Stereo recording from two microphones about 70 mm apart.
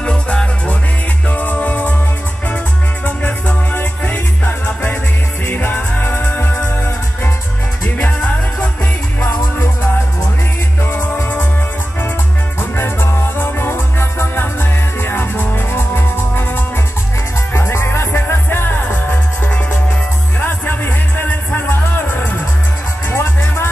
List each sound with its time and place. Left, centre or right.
0.0 s music: centre
3.2 s music: left
10.8 s music: left
12.5 s music: left
23.0 s music: left